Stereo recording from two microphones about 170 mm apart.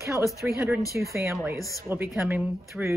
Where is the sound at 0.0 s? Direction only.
15° right (ahead or behind).